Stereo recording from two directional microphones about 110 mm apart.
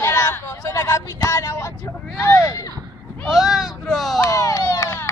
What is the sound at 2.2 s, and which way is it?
Speech, 25° left (ahead or behind).